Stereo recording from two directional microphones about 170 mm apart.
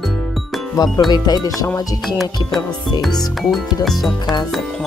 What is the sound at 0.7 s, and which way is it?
Speech, 20° left (ahead or behind).